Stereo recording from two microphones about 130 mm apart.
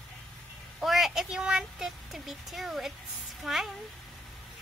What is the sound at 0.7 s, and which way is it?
A woman's voice, centre (ahead or behind).